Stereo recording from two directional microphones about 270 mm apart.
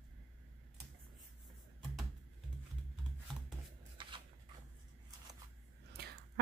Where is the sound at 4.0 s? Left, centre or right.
Centre.